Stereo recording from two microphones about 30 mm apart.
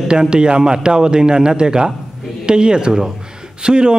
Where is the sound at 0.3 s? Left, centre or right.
Right.